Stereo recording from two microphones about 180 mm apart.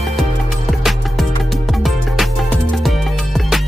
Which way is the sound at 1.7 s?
Centre (ahead or behind).